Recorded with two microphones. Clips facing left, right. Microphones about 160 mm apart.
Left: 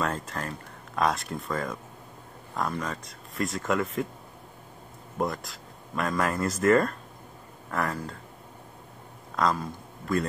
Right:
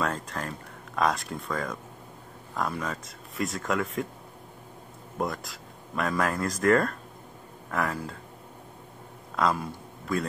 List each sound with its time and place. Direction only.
0.0 s speech: centre (ahead or behind)
5.2 s speech: centre (ahead or behind)
9.4 s a man's voice: 5° right (ahead or behind)